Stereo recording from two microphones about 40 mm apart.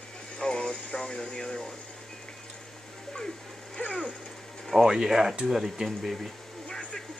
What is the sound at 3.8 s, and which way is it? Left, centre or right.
Cat, left.